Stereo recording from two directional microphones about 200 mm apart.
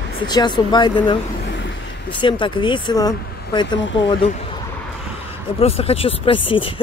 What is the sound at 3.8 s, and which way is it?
Speech, 65° left (ahead or behind).